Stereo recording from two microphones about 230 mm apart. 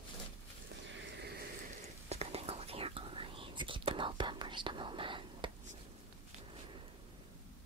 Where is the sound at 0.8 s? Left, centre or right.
Right.